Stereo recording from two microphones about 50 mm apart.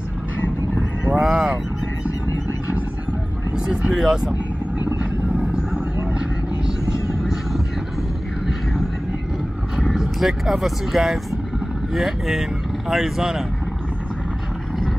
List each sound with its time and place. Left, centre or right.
1.1 s a sound: centre
3.5 s vehicle: centre
3.9 s speech: centre
5.4 s vehicle: centre
9.9 s speech: centre